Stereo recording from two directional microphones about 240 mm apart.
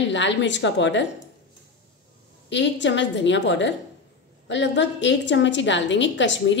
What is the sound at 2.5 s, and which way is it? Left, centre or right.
A woman's voice, left.